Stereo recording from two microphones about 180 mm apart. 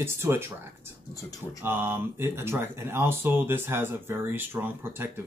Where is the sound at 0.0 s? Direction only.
15° right (ahead or behind).